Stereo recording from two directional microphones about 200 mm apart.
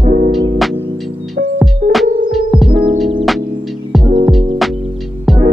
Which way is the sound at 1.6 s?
Centre (ahead or behind).